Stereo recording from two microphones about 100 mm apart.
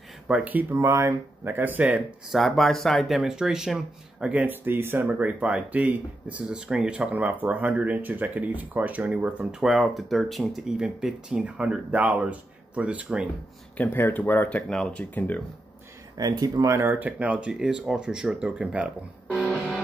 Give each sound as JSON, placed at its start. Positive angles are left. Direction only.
{"t": 0.3, "sound": "speech", "side_deg": -15}
{"t": 2.2, "sound": "speech", "side_deg": 0}
{"t": 13.7, "sound": "speech", "side_deg": 20}
{"t": 14.7, "sound": "speech", "side_deg": 5}
{"t": 16.2, "sound": "speech", "side_deg": -40}
{"t": 19.4, "sound": "music", "side_deg": 10}